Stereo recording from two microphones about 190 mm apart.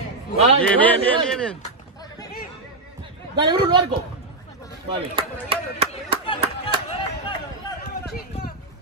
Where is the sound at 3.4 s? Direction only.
25° right (ahead or behind).